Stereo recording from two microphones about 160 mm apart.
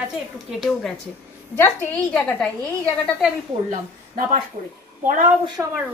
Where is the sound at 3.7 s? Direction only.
60° right (ahead or behind).